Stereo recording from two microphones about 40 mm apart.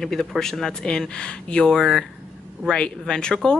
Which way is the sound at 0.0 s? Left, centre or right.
Centre.